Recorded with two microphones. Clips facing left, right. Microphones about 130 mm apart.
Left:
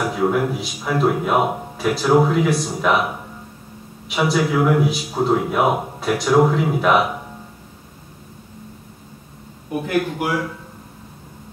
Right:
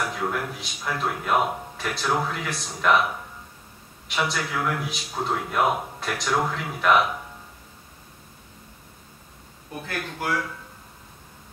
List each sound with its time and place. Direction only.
0.0 s a man's voice: 5° left (ahead or behind)
9.7 s speech: 15° left (ahead or behind)